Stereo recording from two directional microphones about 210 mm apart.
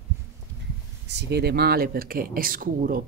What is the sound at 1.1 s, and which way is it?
Speech, 55° right (ahead or behind).